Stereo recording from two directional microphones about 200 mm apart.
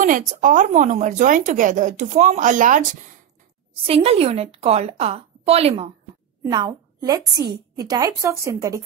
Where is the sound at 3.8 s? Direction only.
30° right (ahead or behind).